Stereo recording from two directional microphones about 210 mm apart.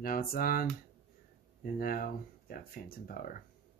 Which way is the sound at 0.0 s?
45° left (ahead or behind).